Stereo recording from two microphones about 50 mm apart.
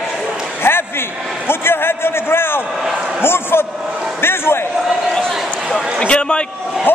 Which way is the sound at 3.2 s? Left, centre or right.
Left.